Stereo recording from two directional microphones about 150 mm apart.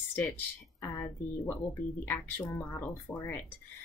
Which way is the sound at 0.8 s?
15° left (ahead or behind).